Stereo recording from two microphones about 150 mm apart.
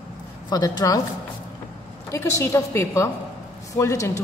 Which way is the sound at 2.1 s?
20° left (ahead or behind).